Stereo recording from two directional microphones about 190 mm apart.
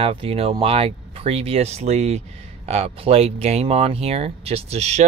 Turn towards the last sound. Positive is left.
turn(degrees=-35)  # may be behind; listen again after turning